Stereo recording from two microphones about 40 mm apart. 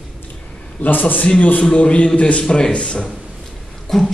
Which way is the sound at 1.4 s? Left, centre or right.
Left.